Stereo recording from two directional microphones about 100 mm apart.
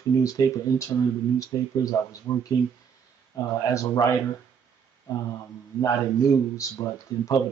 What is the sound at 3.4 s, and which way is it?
Speech, 35° left (ahead or behind).